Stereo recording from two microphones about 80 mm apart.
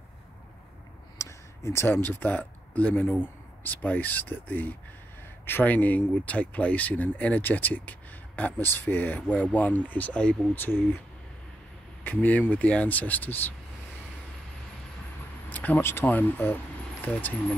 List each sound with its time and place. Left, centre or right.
1.1 s speech: left; by 10.6 s centre
10.6 s speech: left
12.0 s speech: centre
15.5 s speech: left